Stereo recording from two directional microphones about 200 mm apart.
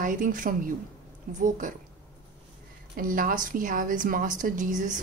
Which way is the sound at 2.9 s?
45° right (ahead or behind).